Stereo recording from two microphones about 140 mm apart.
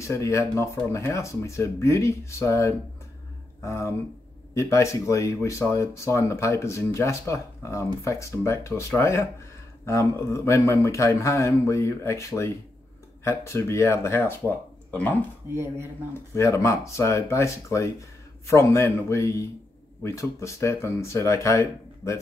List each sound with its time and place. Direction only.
0.0 s speech: 20° left (ahead or behind)
15.5 s speech: 15° right (ahead or behind)
16.1 s speech: 20° left (ahead or behind)